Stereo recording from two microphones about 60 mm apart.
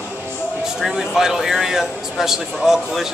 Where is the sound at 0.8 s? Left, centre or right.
Centre.